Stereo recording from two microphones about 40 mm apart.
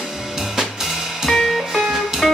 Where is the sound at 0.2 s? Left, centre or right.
Centre.